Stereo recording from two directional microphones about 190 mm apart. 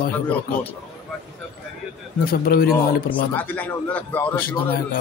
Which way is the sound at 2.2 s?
50° left (ahead or behind).